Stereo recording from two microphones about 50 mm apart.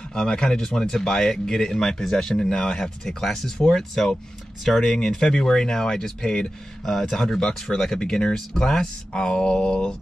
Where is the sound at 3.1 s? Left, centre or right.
Centre.